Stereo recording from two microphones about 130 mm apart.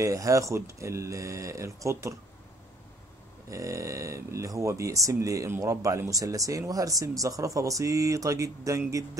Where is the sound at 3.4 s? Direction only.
25° right (ahead or behind).